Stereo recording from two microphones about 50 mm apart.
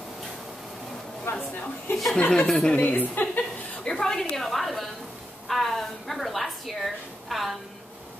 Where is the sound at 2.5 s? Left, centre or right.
Centre.